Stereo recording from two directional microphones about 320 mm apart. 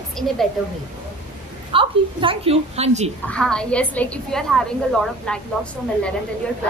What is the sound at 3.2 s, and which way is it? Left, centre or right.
A woman's voice, centre.